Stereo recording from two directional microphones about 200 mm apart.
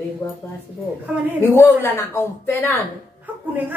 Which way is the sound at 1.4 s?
10° left (ahead or behind).